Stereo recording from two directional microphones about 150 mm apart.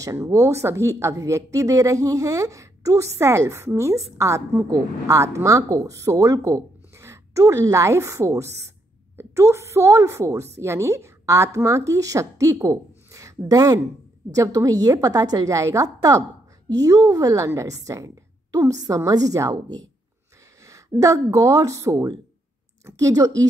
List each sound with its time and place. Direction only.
0.0 s a woman's voice: 20° right (ahead or behind)
21.0 s a woman's voice: 20° right (ahead or behind)